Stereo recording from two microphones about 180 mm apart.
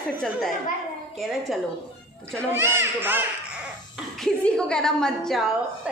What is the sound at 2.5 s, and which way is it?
Speech, 15° right (ahead or behind).